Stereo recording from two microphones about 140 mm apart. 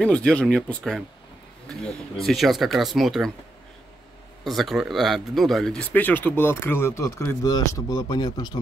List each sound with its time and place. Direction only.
0.0 s speech: 5° left (ahead or behind)
4.5 s speech: centre (ahead or behind); by 8.5 s 30° left (ahead or behind)